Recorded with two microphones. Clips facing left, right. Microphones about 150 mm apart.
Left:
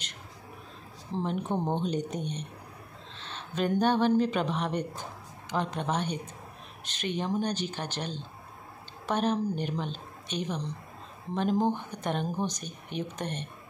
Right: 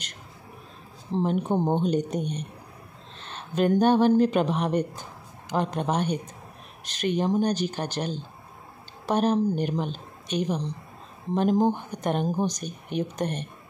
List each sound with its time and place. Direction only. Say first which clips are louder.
1.1 s speech: right 6 dB; 30° right (ahead or behind)
3.3 s speech: right 6 dB; 50° right (ahead or behind)
7.2 s speech: right 6 dB; 40° right (ahead or behind)